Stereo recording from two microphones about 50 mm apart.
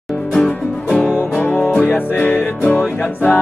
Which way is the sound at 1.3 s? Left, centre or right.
Left.